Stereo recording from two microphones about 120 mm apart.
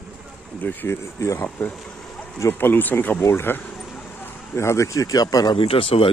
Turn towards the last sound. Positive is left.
turn(degrees=50)  # may be behind; listen again after turning